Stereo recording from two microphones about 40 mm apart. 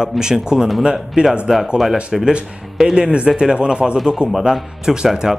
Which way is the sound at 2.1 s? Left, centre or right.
Centre.